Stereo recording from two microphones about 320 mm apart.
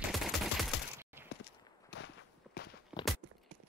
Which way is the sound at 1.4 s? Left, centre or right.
Left.